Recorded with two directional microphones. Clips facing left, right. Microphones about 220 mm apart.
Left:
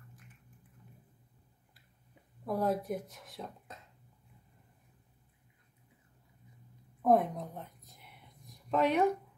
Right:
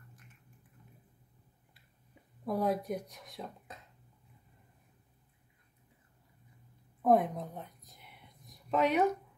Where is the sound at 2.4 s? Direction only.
Centre (ahead or behind).